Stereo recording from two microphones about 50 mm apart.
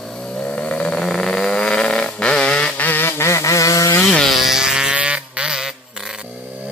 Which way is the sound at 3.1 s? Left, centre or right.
Left.